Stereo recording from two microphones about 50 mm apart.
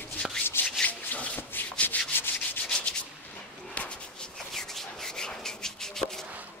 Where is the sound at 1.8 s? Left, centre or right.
Left.